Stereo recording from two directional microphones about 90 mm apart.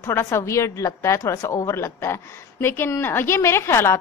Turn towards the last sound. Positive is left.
turn(degrees=30)  # may be behind; listen again after turning